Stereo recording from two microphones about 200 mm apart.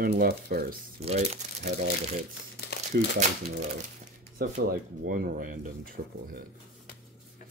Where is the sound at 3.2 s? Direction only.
35° right (ahead or behind).